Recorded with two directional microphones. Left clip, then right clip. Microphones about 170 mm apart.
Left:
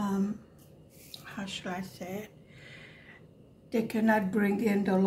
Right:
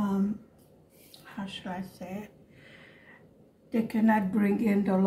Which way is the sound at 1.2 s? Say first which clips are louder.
Left 1 dB; 30° left (ahead or behind).